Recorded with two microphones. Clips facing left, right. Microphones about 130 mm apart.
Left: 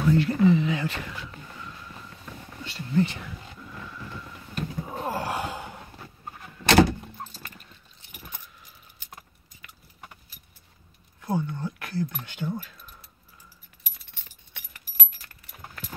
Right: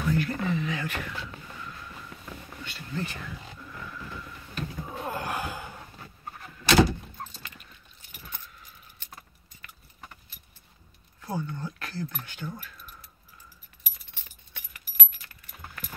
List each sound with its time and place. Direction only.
0.0 s speech: 25° left (ahead or behind)
2.6 s a sound: 30° left (ahead or behind)
4.6 s snort: 35° left (ahead or behind)
7.3 s dog: 40° left (ahead or behind)
9.0 s keys jangling: 15° left (ahead or behind)
11.1 s a sound: 20° left (ahead or behind)
12.3 s keys jangling: 20° left (ahead or behind)